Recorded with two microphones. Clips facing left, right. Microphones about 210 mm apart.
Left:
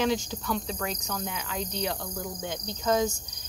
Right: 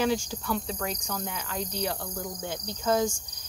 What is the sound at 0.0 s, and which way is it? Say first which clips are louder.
Cricket: even; 5° right (ahead or behind).